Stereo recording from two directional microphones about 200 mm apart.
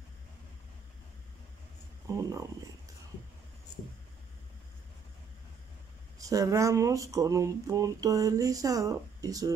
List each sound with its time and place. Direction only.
2.0 s speech: 15° right (ahead or behind)
6.1 s speech: 15° right (ahead or behind)